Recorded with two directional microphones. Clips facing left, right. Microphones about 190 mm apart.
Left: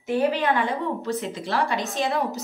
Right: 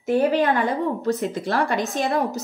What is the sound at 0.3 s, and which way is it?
A woman's voice, 45° right (ahead or behind).